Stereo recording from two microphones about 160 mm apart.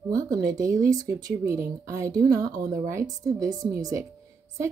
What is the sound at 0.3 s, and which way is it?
Speech, 20° right (ahead or behind).